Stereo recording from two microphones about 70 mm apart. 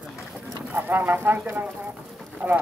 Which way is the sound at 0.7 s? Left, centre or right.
Right.